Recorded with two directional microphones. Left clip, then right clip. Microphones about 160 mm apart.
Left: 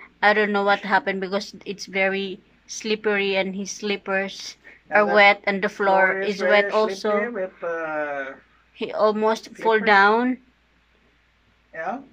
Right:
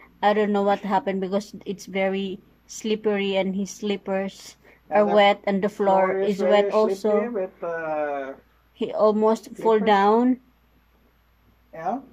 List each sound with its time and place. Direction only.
0.2 s a woman's voice: 20° right (ahead or behind)
11.7 s speech: 10° right (ahead or behind)